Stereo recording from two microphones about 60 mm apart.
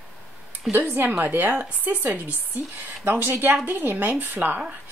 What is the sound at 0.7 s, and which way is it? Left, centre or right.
A woman's voice, right.